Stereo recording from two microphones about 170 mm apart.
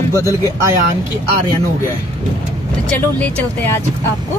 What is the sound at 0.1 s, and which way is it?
Speech, 20° left (ahead or behind).